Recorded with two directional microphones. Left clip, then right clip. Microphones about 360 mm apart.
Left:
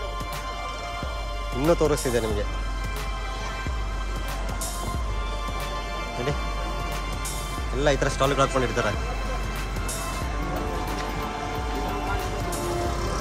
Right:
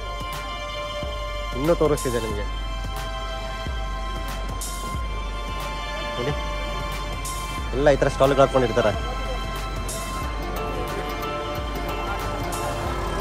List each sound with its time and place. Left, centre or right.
1.6 s speech: centre
7.8 s speech: centre